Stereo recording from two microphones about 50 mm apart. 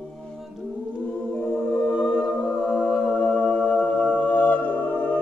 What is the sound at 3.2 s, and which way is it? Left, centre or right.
Humming, left.